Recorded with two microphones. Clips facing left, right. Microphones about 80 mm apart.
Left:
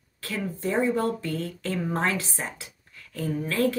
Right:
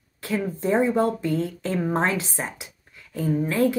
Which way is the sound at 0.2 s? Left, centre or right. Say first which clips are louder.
Right 4 dB; centre.